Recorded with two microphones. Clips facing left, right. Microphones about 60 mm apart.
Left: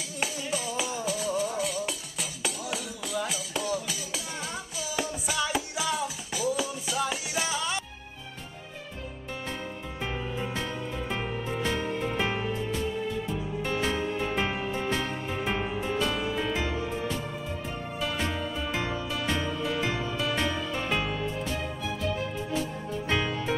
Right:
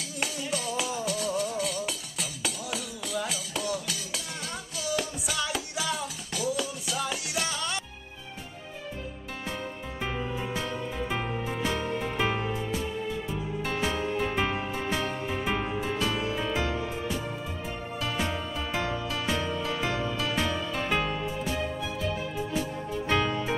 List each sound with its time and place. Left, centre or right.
0.2 s music: centre
10.5 s music: centre
13.7 s music: centre
16.1 s music: centre
18.0 s music: centre
23.0 s music: centre